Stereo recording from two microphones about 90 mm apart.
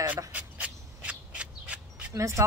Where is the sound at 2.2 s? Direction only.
35° right (ahead or behind).